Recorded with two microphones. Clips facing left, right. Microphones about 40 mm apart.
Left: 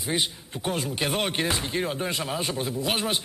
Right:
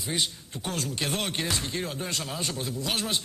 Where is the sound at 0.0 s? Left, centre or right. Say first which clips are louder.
Left 3 dB; centre.